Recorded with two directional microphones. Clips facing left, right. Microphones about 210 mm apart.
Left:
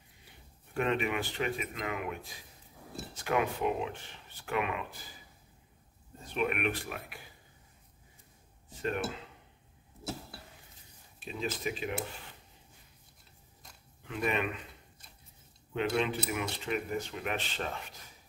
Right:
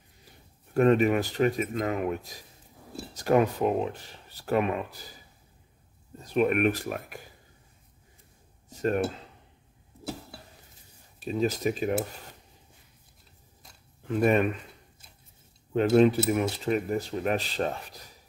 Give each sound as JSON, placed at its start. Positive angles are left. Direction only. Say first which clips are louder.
{"t": 0.7, "sound": "speech", "louder": "right 10 dB", "side_deg": -40}
{"t": 6.2, "sound": "speech", "louder": "right 8 dB", "side_deg": -40}
{"t": 8.6, "sound": "dishes", "louder": "right 8 dB", "side_deg": -40}
{"t": 11.1, "sound": "speech", "louder": "right 9 dB", "side_deg": -40}
{"t": 14.0, "sound": "speech", "louder": "right 9 dB", "side_deg": -40}
{"t": 15.7, "sound": "speech", "louder": "right 11 dB", "side_deg": -40}